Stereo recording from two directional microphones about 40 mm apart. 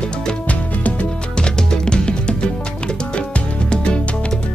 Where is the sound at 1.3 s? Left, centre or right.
Centre.